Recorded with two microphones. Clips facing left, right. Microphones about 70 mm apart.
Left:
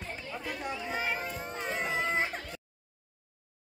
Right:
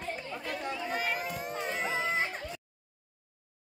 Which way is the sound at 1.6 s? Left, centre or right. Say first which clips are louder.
Left 1 dB; centre.